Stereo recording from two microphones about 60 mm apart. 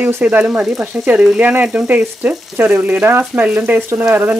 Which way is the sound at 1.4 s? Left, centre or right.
Right.